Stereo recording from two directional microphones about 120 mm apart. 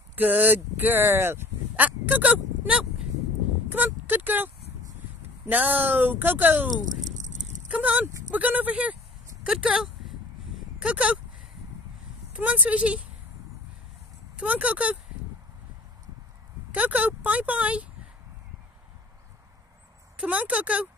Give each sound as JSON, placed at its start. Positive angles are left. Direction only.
{"t": 0.1, "sound": "speech", "side_deg": -15}
{"t": 5.5, "sound": "speech", "side_deg": -15}
{"t": 7.0, "sound": "a sound", "side_deg": -90}
{"t": 7.7, "sound": "speech", "side_deg": -10}
{"t": 9.4, "sound": "a sound", "side_deg": -10}
{"t": 10.8, "sound": "speech", "side_deg": -10}
{"t": 12.3, "sound": "speech", "side_deg": -10}
{"t": 14.3, "sound": "speech", "side_deg": -10}
{"t": 16.7, "sound": "speech", "side_deg": -15}
{"t": 20.2, "sound": "speech", "side_deg": -10}